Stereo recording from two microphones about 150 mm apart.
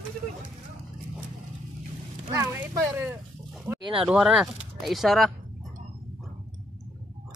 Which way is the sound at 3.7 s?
30° right (ahead or behind).